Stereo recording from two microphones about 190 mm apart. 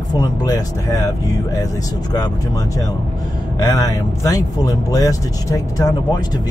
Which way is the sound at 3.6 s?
15° left (ahead or behind).